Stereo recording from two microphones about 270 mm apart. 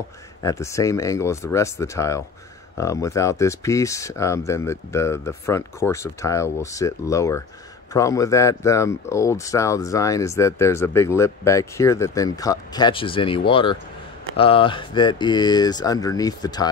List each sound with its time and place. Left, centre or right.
0.4 s speech: centre